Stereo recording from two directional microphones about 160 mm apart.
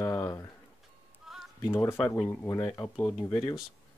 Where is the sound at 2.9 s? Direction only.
5° left (ahead or behind).